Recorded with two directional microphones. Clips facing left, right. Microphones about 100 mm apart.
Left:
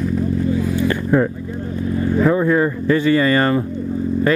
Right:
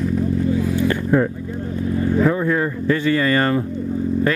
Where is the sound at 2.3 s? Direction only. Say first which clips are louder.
Left 3 dB; 20° left (ahead or behind).